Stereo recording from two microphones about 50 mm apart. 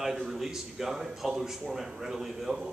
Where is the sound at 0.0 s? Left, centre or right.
Centre.